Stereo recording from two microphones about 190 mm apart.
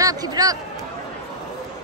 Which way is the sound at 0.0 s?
20° right (ahead or behind).